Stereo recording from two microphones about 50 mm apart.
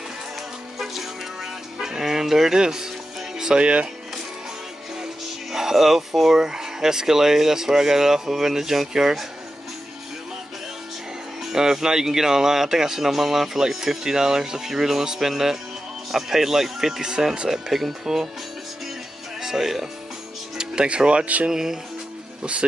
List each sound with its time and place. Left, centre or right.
0.7 s music: centre; by 3.9 s right
5.0 s speech: centre
11.4 s speech: centre
19.4 s speech: centre
21.5 s speech: centre
22.4 s speech: right